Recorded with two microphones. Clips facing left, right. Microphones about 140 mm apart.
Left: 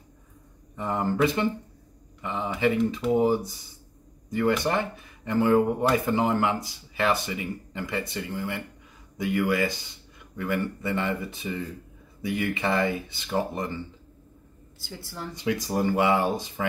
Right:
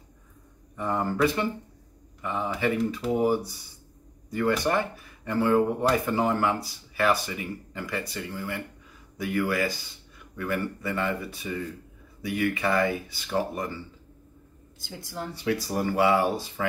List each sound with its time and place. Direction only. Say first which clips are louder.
0.7 s speech: left 1 dB; 20° left (ahead or behind)
14.8 s speech: right 2 dB; 15° right (ahead or behind)
15.3 s speech: left 1 dB; 20° left (ahead or behind)